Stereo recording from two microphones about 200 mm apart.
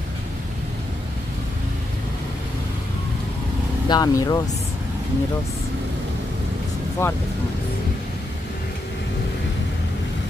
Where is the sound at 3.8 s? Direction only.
20° left (ahead or behind).